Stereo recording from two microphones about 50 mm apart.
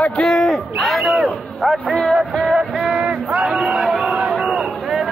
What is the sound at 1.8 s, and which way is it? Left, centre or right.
Music, centre.